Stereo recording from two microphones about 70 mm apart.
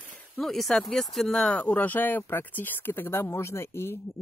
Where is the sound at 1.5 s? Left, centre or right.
Left.